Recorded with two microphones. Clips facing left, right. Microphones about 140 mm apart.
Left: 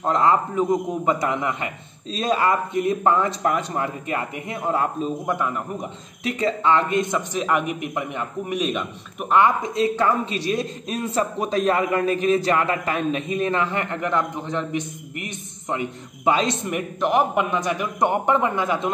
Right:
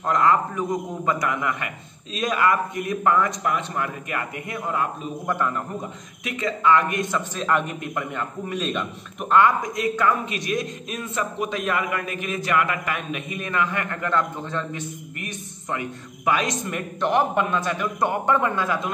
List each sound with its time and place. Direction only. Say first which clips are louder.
0.0 s a man's voice: left 1 dB; 25° left (ahead or behind)
5.2 s a man's voice: left 1 dB; 15° left (ahead or behind)
6.2 s a man's voice: left 1 dB; 30° left (ahead or behind); by 8.8 s 10° left (ahead or behind)
9.3 s a man's voice: even; 25° left (ahead or behind)
16.7 s a man's voice: left 1 dB; 15° left (ahead or behind)